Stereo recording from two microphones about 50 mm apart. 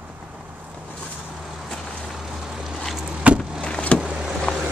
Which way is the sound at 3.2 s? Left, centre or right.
Right.